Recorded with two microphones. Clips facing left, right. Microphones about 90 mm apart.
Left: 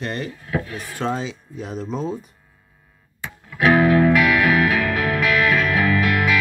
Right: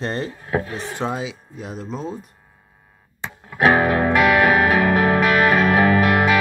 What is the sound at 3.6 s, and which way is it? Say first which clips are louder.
Music: left 1 dB; 35° right (ahead or behind).